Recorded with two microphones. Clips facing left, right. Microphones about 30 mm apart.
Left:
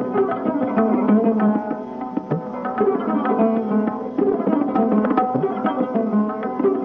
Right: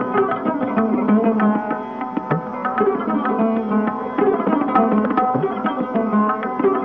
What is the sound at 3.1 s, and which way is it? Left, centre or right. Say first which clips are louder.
Music: even; right.